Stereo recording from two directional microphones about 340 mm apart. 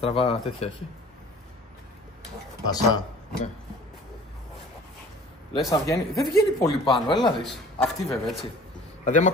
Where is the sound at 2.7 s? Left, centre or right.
Centre.